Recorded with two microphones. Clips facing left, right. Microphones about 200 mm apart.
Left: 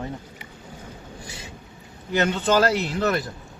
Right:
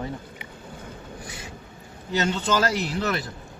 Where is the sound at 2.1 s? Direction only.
55° left (ahead or behind).